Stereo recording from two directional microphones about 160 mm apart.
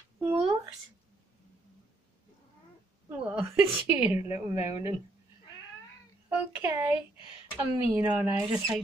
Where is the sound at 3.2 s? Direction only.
15° right (ahead or behind).